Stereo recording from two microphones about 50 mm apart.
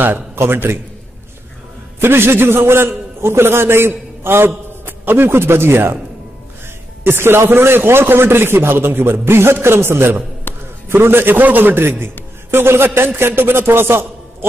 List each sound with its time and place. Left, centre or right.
0.4 s a man's voice: right
2.0 s a man's voice: right
7.0 s a man's voice: right
10.5 s a sound: left
10.9 s a man's voice: right
12.4 s a man's voice: right